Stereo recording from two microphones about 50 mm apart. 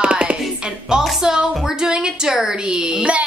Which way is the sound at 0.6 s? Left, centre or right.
Centre.